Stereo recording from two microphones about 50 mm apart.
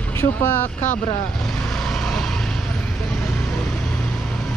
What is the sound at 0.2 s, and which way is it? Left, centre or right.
Speech, left.